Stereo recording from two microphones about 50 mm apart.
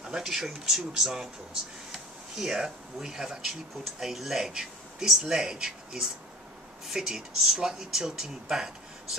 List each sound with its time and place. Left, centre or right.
0.0 s speech: centre